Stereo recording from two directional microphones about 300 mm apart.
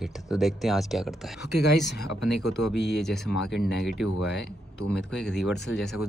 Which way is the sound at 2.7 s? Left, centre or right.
Left.